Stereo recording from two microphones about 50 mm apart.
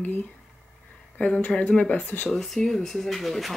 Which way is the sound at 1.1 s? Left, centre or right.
Left.